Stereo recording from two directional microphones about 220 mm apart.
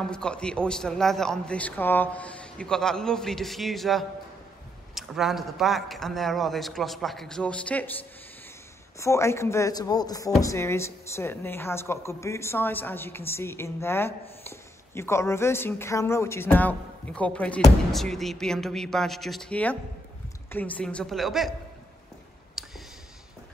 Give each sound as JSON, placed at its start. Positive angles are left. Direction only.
{"t": 0.0, "sound": "a man's voice", "side_deg": 5}
{"t": 9.0, "sound": "a woman's voice", "side_deg": 15}
{"t": 22.6, "sound": "a sound", "side_deg": 0}